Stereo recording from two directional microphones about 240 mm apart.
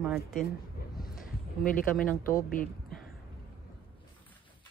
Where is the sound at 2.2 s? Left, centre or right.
Left.